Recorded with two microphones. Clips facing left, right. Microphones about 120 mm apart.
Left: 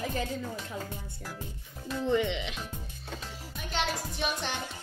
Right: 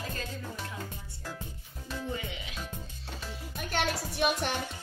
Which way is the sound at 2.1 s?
80° left.